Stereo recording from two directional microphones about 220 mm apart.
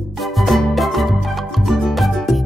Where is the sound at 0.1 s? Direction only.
Centre (ahead or behind).